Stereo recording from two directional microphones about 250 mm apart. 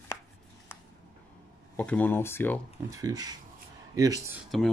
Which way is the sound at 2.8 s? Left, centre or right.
Centre.